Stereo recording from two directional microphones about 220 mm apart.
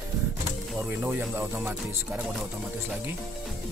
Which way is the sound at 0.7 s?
10° right (ahead or behind).